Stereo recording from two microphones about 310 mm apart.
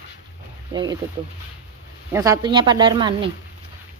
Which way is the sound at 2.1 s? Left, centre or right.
Centre.